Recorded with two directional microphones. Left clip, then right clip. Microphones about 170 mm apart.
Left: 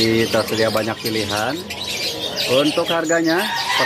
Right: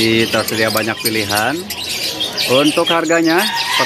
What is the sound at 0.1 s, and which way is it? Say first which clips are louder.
Speech: right 3 dB; 15° right (ahead or behind).